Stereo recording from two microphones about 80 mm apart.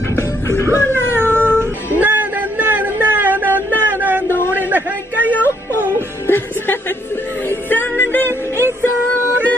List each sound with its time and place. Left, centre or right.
0.1 s music: left
0.9 s cat: right
1.6 s music: right
3.8 s a sound: right
6.2 s music: left